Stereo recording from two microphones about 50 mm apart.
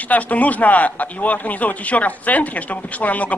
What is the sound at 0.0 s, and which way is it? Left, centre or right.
A man's voice, left.